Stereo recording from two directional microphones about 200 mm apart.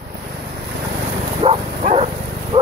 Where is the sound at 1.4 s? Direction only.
30° right (ahead or behind).